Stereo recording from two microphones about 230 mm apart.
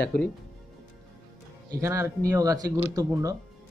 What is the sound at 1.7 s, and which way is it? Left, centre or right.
Speech, centre.